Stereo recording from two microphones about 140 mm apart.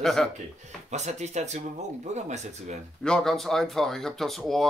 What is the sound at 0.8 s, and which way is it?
Speech, 55° right (ahead or behind).